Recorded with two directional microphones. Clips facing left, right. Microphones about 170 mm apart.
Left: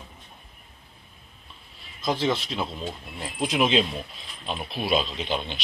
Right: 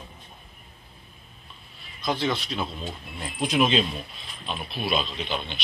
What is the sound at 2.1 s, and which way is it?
Speech, 25° left (ahead or behind).